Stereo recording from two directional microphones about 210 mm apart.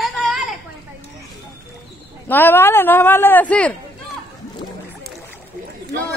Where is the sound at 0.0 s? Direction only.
Centre (ahead or behind).